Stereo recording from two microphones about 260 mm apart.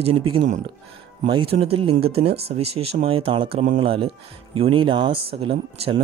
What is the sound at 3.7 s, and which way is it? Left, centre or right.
Speech, right.